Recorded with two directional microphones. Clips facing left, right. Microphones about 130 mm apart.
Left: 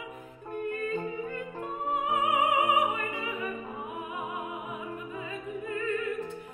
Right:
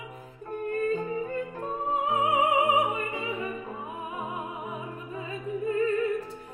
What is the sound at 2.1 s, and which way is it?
Opera, 25° right (ahead or behind).